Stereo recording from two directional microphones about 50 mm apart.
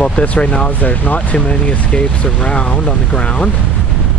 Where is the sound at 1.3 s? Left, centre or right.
Left.